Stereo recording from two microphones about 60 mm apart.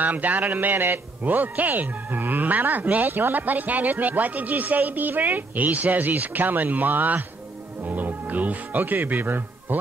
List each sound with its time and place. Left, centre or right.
0.0 s a man's voice: right